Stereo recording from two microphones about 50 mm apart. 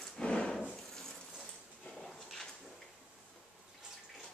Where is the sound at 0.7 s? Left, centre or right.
Centre.